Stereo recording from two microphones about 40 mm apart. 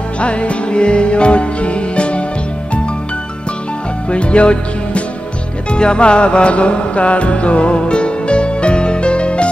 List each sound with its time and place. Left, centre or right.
0.2 s music: left
4.1 s music: left